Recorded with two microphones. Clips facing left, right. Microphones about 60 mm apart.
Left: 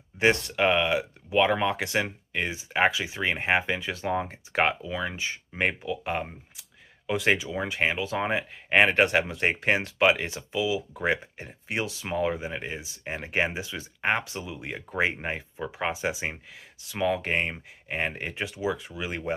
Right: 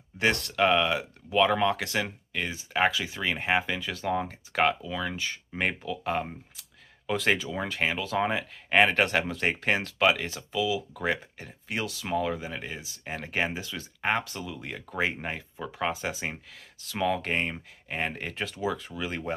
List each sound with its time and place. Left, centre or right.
0.2 s speech: left